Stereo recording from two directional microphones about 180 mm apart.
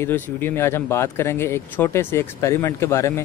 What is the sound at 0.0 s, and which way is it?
Speech, 10° left (ahead or behind).